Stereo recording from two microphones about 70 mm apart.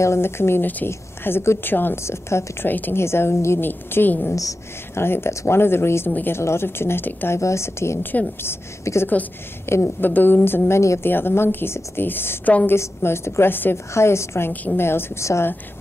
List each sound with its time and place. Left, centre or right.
0.0 s a woman's voice: left
2.7 s a woman's voice: left
3.0 s a woman's voice: left
7.3 s a woman's voice: left
8.0 s a woman's voice: left
10.8 s a woman's voice: left
11.1 s a woman's voice: left
13.9 s a woman's voice: left
14.5 s a woman's voice: left
14.8 s a woman's voice: left